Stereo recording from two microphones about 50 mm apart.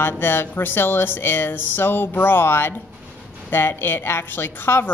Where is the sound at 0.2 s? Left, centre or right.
Left.